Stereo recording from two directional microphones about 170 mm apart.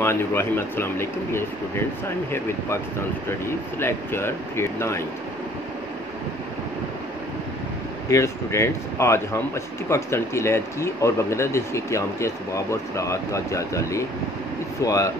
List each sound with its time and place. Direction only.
0.0 s speech: 15° left (ahead or behind)
3.3 s speech: 15° left (ahead or behind)
8.1 s speech: 15° left (ahead or behind)